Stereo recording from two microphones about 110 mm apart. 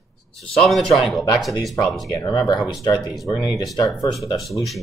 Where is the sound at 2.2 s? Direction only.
35° left (ahead or behind).